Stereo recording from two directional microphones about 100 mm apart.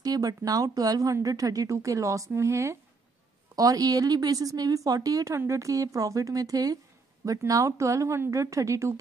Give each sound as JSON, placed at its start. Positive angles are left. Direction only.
{"t": 0.0, "sound": "speech", "side_deg": -40}